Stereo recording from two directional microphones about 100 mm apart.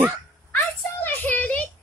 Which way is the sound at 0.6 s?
20° left (ahead or behind).